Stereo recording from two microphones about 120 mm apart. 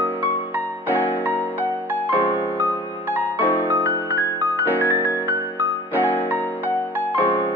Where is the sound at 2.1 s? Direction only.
15° right (ahead or behind).